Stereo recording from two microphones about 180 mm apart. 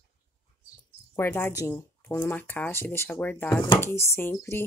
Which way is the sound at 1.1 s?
10° left (ahead or behind).